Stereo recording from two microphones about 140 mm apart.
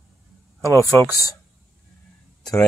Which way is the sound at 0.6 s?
20° left (ahead or behind).